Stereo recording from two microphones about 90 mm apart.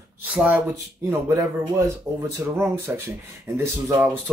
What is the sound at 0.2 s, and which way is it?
Speech, 15° right (ahead or behind).